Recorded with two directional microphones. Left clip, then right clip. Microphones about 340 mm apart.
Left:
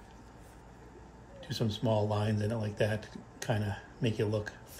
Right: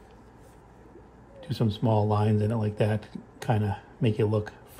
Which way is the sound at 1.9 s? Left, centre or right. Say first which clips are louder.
Right 5 dB; centre.